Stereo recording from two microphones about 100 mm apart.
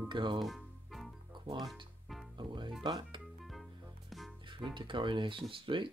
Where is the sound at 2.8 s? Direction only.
50° right (ahead or behind).